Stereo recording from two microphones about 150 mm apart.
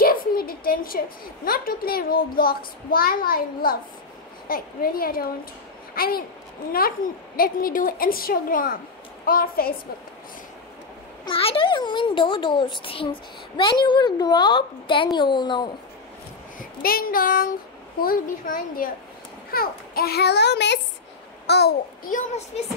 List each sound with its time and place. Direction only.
0.0 s a woman's voice: 75° left (ahead or behind)
7.3 s a woman's voice: 75° left (ahead or behind)
11.2 s a child's voice: 40° left (ahead or behind)
16.5 s a woman's voice: 75° left (ahead or behind)
19.5 s a child's voice: 80° left